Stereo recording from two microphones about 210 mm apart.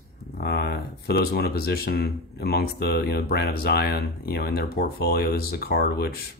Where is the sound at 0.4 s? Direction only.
50° left (ahead or behind).